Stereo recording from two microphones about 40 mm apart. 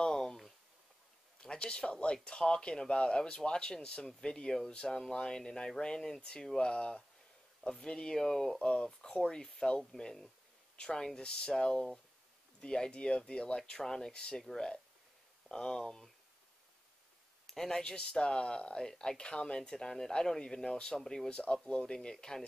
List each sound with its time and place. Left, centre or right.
0.0 s a sound: centre
1.4 s speech: left
8.5 s speech: left
9.4 s speech: centre
15.4 s speech: centre
17.5 s a sound: centre
17.7 s speech: centre